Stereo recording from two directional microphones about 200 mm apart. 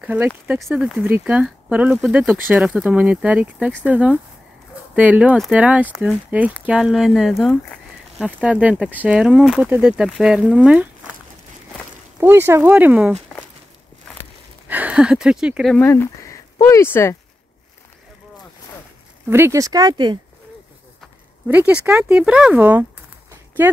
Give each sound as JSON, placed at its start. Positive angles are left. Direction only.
{"t": 0.0, "sound": "speech", "side_deg": -5}
{"t": 12.2, "sound": "speech", "side_deg": -10}
{"t": 13.1, "sound": "walk", "side_deg": 10}
{"t": 14.7, "sound": "speech", "side_deg": -5}
{"t": 19.2, "sound": "speech", "side_deg": -10}
{"t": 21.5, "sound": "speech", "side_deg": -10}